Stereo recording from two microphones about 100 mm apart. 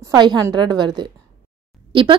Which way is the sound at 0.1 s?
45° right (ahead or behind).